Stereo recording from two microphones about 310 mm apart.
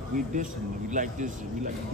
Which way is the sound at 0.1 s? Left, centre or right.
Right.